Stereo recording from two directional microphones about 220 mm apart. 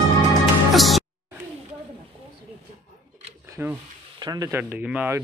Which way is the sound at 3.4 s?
10° right (ahead or behind).